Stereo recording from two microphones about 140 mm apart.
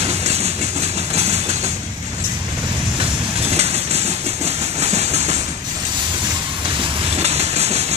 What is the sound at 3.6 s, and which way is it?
Train, 50° right (ahead or behind).